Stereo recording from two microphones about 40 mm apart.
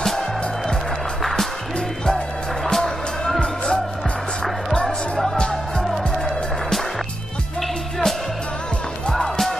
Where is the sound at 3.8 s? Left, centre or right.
Centre.